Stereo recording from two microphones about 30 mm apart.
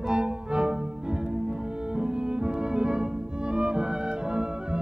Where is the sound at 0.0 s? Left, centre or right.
Right.